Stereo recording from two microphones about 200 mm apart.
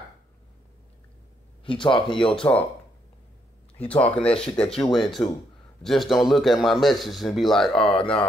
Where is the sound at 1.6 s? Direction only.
25° left (ahead or behind).